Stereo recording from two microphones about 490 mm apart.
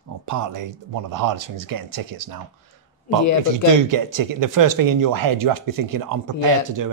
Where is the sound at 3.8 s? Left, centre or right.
Right.